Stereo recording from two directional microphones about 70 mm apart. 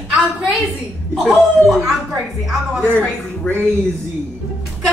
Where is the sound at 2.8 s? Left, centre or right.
Left.